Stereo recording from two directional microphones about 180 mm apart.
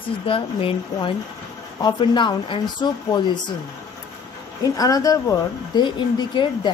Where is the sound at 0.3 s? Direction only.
30° left (ahead or behind).